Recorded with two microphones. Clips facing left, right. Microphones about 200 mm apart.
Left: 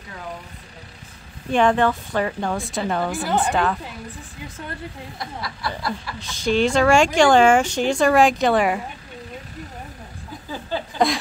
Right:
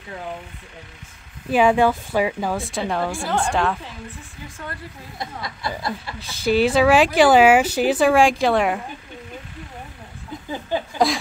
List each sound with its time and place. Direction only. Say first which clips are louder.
1.5 s a woman's voice: right 2 dB; 10° right (ahead or behind)
5.2 s speech: right 1 dB; 20° right (ahead or behind)
6.1 s a woman's voice: right 2 dB; 5° right (ahead or behind)
10.7 s a sound: right 3 dB; 15° right (ahead or behind)